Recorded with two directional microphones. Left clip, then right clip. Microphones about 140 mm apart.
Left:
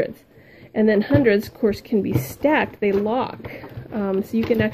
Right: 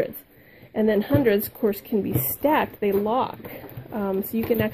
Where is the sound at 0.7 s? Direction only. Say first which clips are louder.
Left 3 dB; centre (ahead or behind).